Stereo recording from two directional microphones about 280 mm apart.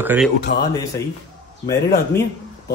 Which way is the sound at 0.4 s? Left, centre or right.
Left.